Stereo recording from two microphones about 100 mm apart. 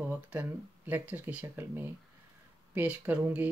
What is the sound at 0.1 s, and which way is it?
Speech, 20° right (ahead or behind).